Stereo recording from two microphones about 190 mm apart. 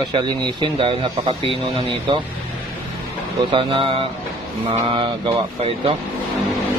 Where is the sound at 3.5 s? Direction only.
30° right (ahead or behind).